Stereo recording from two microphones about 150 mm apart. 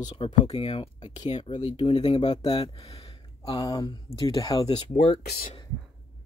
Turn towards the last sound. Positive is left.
turn(degrees=80)